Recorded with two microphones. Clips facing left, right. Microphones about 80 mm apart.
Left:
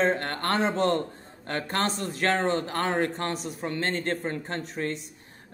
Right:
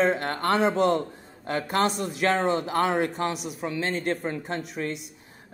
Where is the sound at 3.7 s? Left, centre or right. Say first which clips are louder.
Right 1 dB; left.